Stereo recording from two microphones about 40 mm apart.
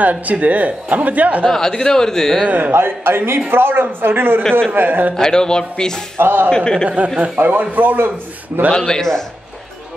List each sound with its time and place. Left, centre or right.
0.0 s speech: right
1.4 s a man's voice: centre
2.7 s a man's voice: right
4.4 s a man's voice: centre
4.7 s speech: right
5.1 s a man's voice: centre
6.1 s speech: right
6.5 s speech: left
7.3 s speech: right
8.7 s speech: centre